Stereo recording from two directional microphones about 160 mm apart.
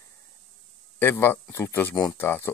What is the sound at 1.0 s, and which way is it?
Speech, 15° left (ahead or behind).